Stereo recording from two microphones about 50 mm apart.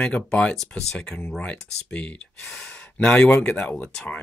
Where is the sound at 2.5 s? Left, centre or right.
Left.